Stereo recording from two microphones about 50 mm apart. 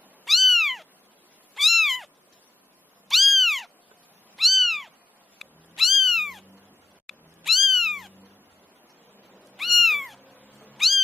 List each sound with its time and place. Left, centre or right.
0.2 s cat: centre
3.1 s cat: centre
9.6 s cat: centre
10.3 s cat: right